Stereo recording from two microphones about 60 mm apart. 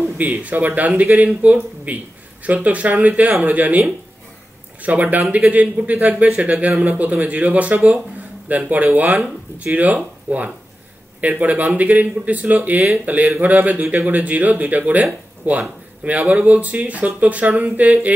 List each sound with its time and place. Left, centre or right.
0.0 s a man's voice: right
4.8 s a man's voice: right